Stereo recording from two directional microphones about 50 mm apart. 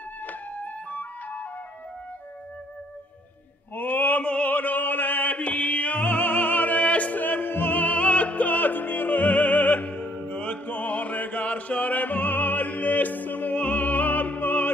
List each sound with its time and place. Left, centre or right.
0.2 s music: left
3.7 s mantra: left